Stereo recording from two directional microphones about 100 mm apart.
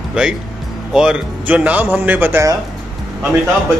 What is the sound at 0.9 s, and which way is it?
Speech, 10° right (ahead or behind).